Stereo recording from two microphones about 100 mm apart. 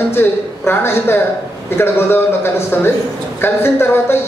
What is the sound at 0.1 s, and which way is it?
A man's voice, 20° left (ahead or behind).